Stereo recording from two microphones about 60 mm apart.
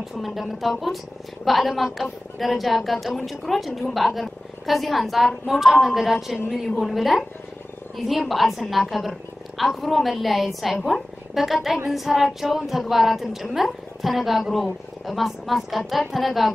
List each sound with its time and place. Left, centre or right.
0.0 s a woman's voice: centre